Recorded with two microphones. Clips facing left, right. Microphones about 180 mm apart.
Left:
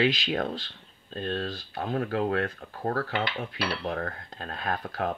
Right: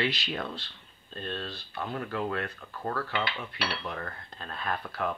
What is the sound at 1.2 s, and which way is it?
Speech, 45° left (ahead or behind).